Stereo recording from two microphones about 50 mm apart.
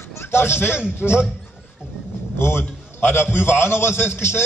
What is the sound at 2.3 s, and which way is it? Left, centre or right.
A man's voice, left.